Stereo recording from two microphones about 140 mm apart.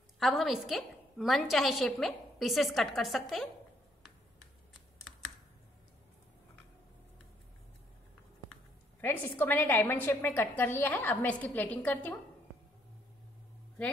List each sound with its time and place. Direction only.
0.2 s a woman's voice: centre (ahead or behind)
9.0 s a woman's voice: 15° left (ahead or behind)